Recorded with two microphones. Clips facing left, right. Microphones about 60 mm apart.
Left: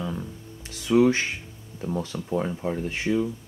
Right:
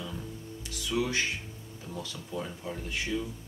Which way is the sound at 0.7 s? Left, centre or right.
Left.